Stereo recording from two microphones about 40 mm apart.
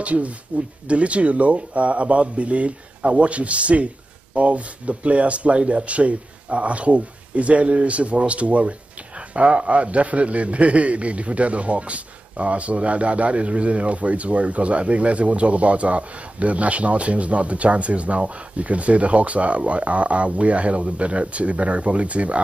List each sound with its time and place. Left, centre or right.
0.0 s a man's voice: right